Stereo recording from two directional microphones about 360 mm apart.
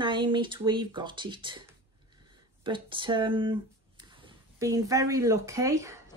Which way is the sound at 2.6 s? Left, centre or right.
Centre.